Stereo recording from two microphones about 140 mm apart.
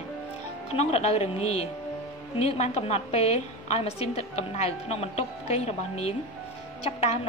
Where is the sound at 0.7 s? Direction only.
50° left (ahead or behind).